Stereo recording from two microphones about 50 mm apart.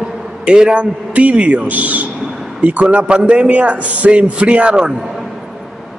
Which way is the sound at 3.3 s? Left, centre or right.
Right.